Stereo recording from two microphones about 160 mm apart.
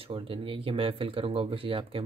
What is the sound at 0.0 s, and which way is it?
Speech, 35° right (ahead or behind).